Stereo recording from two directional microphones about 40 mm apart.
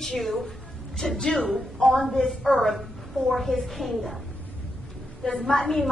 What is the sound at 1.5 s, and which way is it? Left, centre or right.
A woman's voice, centre.